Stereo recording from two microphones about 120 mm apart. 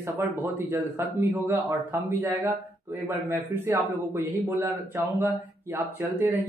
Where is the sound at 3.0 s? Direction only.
20° right (ahead or behind).